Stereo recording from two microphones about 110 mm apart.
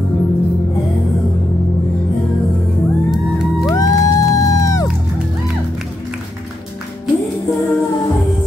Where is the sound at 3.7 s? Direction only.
30° left (ahead or behind).